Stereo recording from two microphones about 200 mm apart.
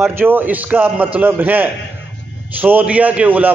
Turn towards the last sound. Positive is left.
turn(degrees=-10)  # may be behind; listen again after turning